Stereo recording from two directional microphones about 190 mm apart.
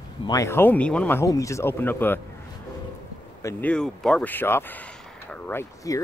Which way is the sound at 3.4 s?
15° left (ahead or behind).